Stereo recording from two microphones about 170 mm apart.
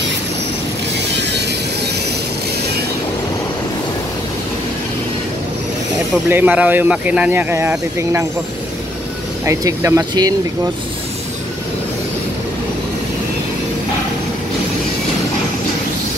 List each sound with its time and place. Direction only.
0.9 s music: 90° right
6.2 s speech: 10° right (ahead or behind)
9.4 s speech: 20° right (ahead or behind)